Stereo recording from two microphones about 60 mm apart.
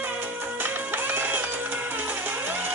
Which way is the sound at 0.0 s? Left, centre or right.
Right.